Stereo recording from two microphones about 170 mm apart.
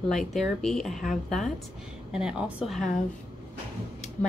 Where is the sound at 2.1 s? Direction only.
5° right (ahead or behind).